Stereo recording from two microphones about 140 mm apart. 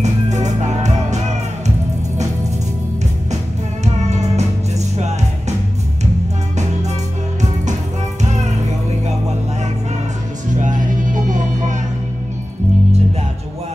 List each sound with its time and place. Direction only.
0.0 s music: 55° right (ahead or behind)
3.8 s music: 55° right (ahead or behind)
10.6 s music: 65° right (ahead or behind)